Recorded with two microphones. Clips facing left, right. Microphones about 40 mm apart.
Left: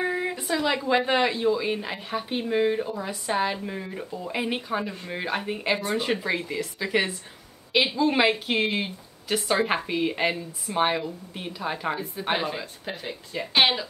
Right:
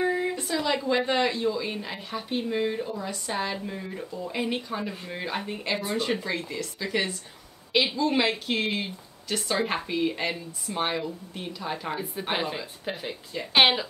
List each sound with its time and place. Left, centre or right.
0.0 s speech: centre
12.3 s speech: centre